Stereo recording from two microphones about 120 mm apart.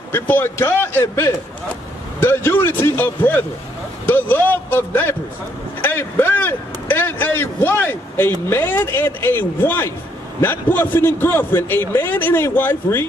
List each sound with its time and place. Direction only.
0.1 s a man's voice: 15° left (ahead or behind)